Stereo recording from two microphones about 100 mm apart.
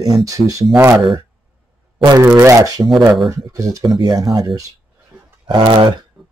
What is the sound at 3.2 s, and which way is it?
Speech, 35° right (ahead or behind).